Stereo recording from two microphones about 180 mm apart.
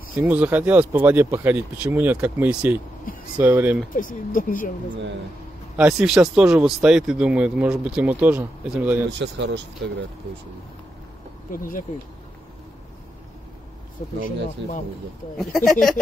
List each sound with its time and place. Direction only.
0.2 s speech: 10° right (ahead or behind)
3.9 s speech: 50° left (ahead or behind)
5.8 s speech: 5° right (ahead or behind)
9.2 s speech: 80° right
11.5 s speech: 50° left (ahead or behind)
14.0 s speech: 45° left (ahead or behind)
14.6 s speech: 80° right
15.3 s speech: centre (ahead or behind)